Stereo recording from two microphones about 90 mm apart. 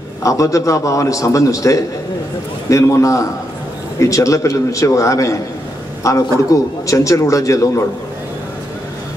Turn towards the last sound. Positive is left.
turn(degrees=35)  # may be behind; listen again after turning